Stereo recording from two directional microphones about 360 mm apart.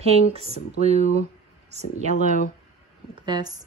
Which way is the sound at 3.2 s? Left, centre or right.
Centre.